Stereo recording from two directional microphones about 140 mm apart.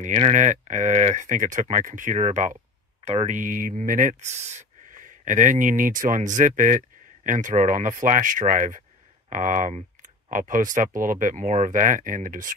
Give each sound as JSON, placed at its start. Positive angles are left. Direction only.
{"t": 0.0, "sound": "speech", "side_deg": -55}
{"t": 4.5, "sound": "speech", "side_deg": -65}